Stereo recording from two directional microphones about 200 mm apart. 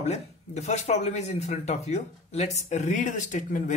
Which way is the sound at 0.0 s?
35° left (ahead or behind).